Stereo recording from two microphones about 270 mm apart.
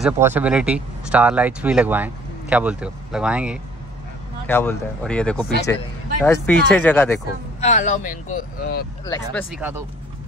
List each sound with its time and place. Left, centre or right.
0.0 s speech: centre
4.5 s speech: centre
7.6 s a man's voice: left
9.3 s speech: centre